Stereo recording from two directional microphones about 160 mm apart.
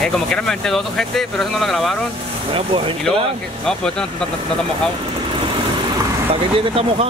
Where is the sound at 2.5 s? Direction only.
35° right (ahead or behind).